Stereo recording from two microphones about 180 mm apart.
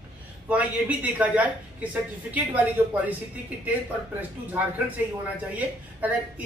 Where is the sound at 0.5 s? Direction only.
10° right (ahead or behind).